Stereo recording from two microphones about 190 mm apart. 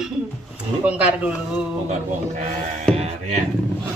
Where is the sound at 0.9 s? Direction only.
5° right (ahead or behind).